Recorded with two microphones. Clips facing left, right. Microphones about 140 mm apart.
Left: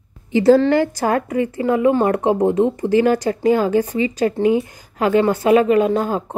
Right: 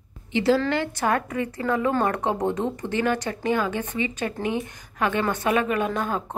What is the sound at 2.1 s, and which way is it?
Speech, 30° left (ahead or behind).